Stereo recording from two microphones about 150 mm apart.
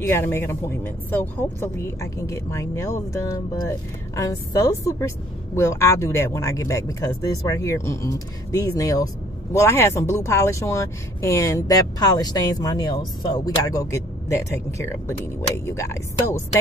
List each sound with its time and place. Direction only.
0.0 s speech: 15° left (ahead or behind)